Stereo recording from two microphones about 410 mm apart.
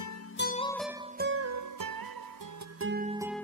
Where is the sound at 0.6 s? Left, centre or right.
Centre.